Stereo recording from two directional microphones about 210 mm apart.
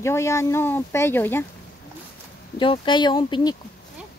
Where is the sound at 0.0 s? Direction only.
15° left (ahead or behind).